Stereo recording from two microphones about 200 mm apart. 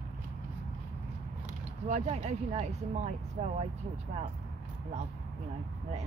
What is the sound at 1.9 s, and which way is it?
Speech, 35° right (ahead or behind).